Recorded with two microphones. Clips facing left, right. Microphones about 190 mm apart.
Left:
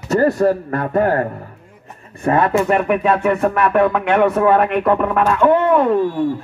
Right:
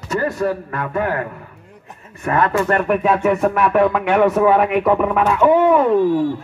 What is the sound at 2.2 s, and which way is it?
Speech, 25° left (ahead or behind).